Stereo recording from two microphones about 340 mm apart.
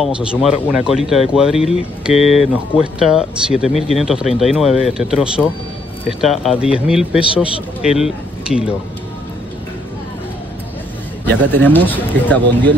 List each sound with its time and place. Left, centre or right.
0.0 s speech: centre
11.5 s speech: centre